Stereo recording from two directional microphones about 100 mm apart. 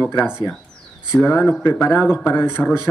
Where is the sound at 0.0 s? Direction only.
20° left (ahead or behind).